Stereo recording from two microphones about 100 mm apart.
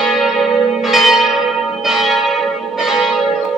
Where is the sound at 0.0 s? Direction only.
Centre (ahead or behind).